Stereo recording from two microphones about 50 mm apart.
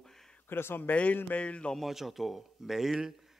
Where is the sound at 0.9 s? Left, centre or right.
Left.